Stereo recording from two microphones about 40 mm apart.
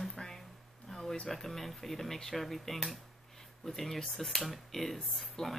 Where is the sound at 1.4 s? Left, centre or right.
Centre.